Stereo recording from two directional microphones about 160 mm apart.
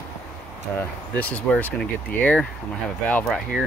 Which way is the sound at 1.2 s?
10° left (ahead or behind).